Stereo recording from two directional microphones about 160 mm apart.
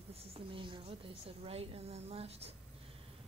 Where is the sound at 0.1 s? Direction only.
35° right (ahead or behind).